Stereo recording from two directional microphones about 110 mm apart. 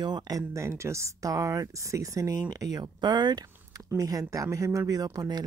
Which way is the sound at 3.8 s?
30° right (ahead or behind).